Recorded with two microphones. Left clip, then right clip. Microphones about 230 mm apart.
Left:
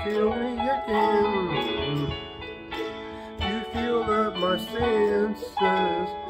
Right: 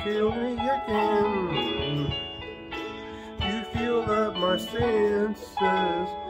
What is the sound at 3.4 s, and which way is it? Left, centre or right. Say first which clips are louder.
Music: left 1 dB; left.